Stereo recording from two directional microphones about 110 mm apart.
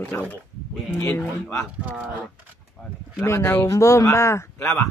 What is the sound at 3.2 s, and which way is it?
Speech, 25° left (ahead or behind).